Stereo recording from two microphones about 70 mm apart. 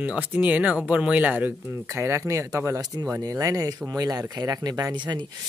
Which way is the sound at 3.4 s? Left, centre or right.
Right.